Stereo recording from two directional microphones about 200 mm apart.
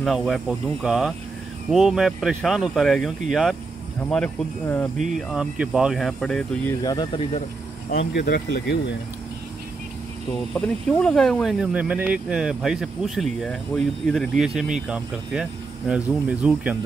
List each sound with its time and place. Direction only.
0.0 s speech: centre (ahead or behind); by 7.4 s 25° left (ahead or behind)
8.0 s speech: 55° left (ahead or behind)
10.5 s speech: 5° left (ahead or behind)